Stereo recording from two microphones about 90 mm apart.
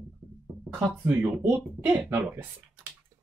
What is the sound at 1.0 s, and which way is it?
Speech, 20° right (ahead or behind).